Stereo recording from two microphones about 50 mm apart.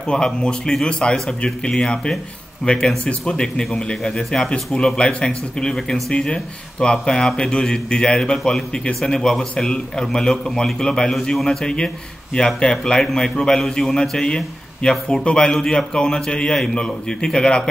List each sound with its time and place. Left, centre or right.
0.0 s speech: centre
5.8 s speech: centre
6.1 s speech: centre